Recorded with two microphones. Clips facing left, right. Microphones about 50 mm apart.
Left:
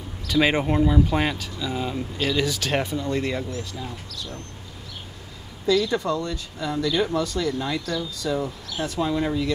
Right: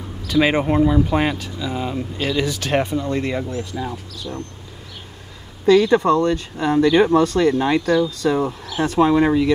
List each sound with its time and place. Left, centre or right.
0.2 s speech: centre
2.8 s speech: right
3.7 s speech: right
5.7 s speech: right